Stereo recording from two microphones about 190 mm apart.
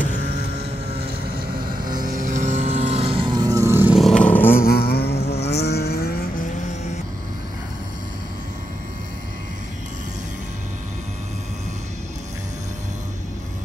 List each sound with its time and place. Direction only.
2.0 s vehicle: 45° right (ahead or behind); by 4.0 s 10° right (ahead or behind)
4.0 s vehicle: 5° left (ahead or behind)
4.6 s vehicle: 55° left (ahead or behind)